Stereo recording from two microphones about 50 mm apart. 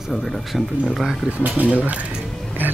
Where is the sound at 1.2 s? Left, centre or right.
Right.